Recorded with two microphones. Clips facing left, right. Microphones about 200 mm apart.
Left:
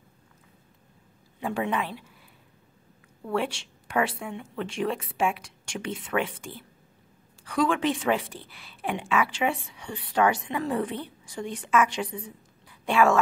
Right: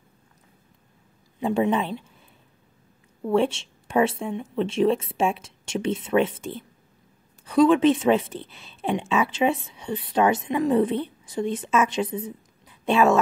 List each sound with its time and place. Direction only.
1.4 s a woman's voice: 25° right (ahead or behind)
3.3 s a woman's voice: 25° right (ahead or behind)